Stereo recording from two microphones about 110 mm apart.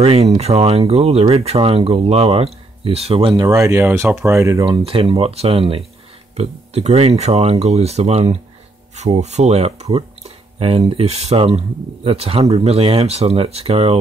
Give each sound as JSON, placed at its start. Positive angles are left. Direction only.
{"t": 0.0, "sound": "speech", "side_deg": -70}
{"t": 3.4, "sound": "speech", "side_deg": -30}
{"t": 4.6, "sound": "speech", "side_deg": -55}
{"t": 6.3, "sound": "speech", "side_deg": -80}
{"t": 8.9, "sound": "speech", "side_deg": -85}